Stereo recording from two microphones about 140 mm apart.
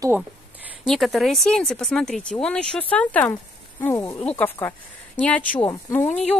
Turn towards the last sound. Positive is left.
turn(degrees=10)  # may be behind; listen again after turning